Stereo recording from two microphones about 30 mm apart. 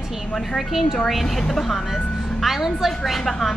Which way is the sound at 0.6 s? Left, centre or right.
Centre.